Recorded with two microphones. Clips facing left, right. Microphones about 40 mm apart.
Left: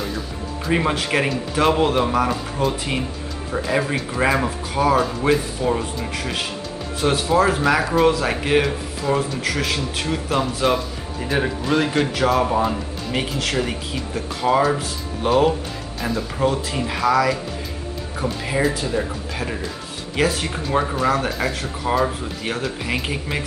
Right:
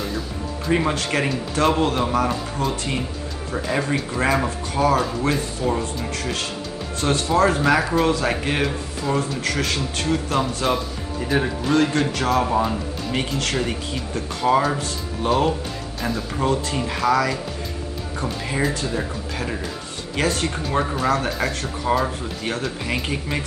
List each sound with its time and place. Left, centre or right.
0.7 s speech: centre